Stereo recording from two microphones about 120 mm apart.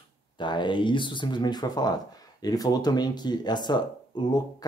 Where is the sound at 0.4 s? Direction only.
40° left (ahead or behind).